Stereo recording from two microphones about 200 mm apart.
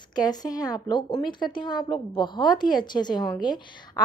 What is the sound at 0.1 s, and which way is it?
A woman's voice, 20° left (ahead or behind).